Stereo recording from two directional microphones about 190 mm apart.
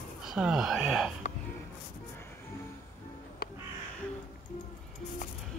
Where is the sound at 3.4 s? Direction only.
55° left (ahead or behind).